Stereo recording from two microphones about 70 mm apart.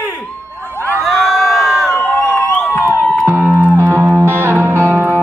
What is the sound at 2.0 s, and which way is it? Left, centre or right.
Crowd, left.